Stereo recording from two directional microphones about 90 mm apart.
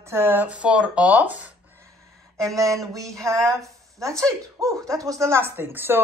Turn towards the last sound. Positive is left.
turn(degrees=-25)  # may be behind; listen again after turning